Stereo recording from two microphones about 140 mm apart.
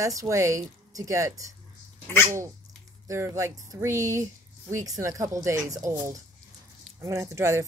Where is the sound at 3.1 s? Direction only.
20° right (ahead or behind).